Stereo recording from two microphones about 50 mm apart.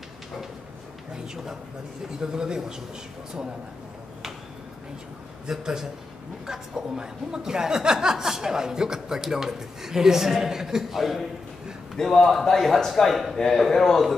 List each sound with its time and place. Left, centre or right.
1.1 s a woman's voice: centre
5.5 s a woman's voice: centre